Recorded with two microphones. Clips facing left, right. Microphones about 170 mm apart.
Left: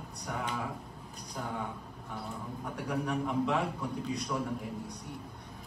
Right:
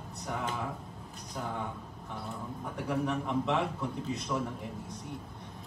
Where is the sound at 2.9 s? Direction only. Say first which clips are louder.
Right 1 dB; centre (ahead or behind).